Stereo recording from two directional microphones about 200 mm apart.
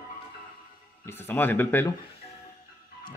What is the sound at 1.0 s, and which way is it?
Speech, 10° left (ahead or behind).